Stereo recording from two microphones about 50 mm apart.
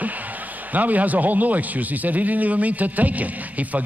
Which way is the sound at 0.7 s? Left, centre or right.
Right.